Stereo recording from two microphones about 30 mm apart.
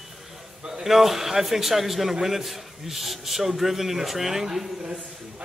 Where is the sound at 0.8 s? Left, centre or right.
Centre.